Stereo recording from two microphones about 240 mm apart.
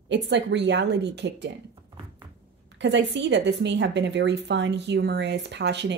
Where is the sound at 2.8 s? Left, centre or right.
Right.